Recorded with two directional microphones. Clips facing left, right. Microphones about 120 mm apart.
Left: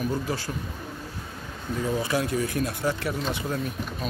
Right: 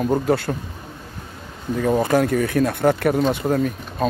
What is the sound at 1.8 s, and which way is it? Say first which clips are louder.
Speech: right 9 dB; 55° right (ahead or behind).